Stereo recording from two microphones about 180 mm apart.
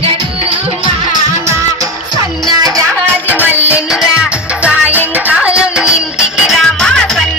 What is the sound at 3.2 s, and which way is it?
Music, 10° right (ahead or behind).